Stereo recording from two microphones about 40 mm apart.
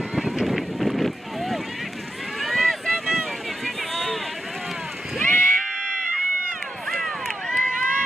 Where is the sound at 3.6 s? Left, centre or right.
Centre.